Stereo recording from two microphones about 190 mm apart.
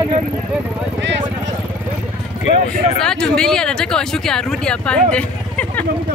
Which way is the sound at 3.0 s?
5° left (ahead or behind).